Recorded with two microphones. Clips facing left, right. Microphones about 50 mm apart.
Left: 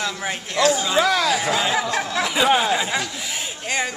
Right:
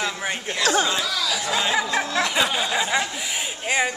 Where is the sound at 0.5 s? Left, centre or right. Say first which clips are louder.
Left 7 dB; right.